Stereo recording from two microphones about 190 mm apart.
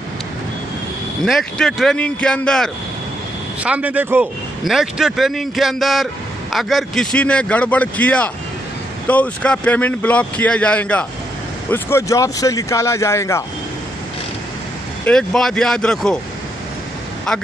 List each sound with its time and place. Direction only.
1.2 s a man's voice: 5° left (ahead or behind)
3.6 s a man's voice: 5° right (ahead or behind); by 13.4 s 15° left (ahead or behind)
15.0 s a man's voice: 5° left (ahead or behind)